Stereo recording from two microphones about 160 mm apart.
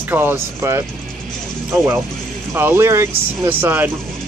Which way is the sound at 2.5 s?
15° right (ahead or behind).